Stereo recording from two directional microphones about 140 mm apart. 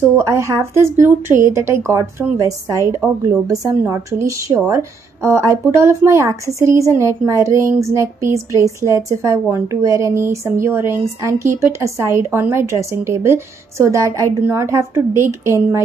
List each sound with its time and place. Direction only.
0.0 s speech: 20° right (ahead or behind)